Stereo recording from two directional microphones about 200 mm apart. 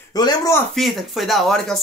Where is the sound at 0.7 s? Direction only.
Centre (ahead or behind).